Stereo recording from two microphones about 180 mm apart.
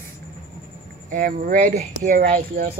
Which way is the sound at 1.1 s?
50° right (ahead or behind).